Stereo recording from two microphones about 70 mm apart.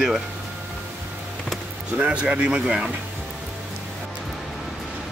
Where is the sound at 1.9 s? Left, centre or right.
Centre.